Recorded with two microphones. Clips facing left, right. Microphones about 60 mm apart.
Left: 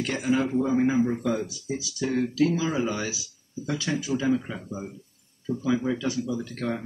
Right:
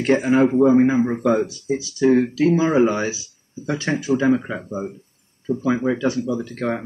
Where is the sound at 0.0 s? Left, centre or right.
Right.